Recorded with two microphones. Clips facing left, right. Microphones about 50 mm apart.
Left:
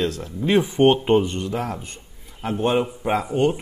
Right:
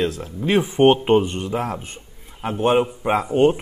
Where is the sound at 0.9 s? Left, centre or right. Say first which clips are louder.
Right 2 dB; centre.